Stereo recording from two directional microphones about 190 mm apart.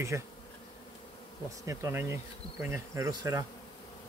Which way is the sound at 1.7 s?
15° right (ahead or behind).